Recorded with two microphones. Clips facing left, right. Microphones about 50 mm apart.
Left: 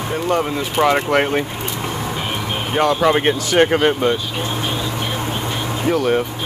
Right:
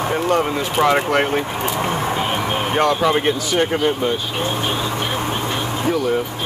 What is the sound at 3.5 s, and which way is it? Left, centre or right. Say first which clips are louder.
Speech: left 6 dB; left.